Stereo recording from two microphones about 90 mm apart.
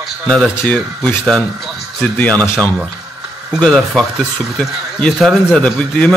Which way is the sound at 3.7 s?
5° right (ahead or behind).